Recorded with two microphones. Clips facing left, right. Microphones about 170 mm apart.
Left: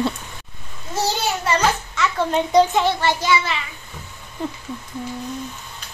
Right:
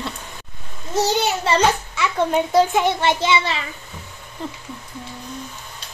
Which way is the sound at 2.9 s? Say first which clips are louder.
Right 1 dB; 20° right (ahead or behind).